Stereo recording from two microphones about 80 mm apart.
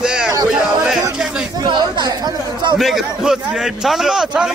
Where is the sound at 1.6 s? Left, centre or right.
Right.